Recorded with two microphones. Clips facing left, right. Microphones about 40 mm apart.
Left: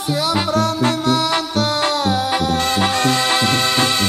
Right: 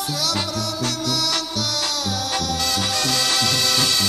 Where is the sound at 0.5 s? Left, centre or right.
Left.